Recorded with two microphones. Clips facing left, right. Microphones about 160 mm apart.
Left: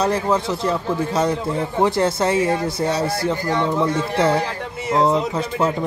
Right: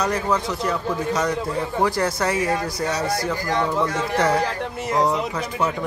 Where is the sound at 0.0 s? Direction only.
30° left (ahead or behind).